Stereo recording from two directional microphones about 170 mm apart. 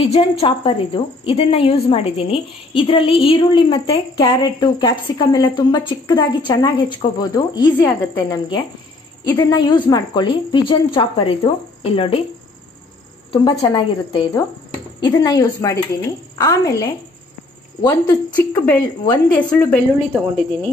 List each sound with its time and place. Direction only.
0.0 s a woman's voice: 35° left (ahead or behind)
13.3 s a woman's voice: 25° left (ahead or behind)
18.7 s a woman's voice: 10° left (ahead or behind)